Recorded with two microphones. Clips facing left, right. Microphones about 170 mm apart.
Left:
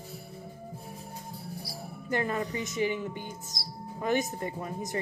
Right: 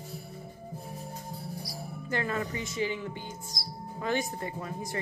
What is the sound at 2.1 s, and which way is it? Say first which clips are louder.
Speech: left 2 dB; 20° left (ahead or behind).